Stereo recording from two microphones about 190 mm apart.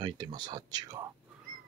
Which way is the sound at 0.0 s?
20° right (ahead or behind).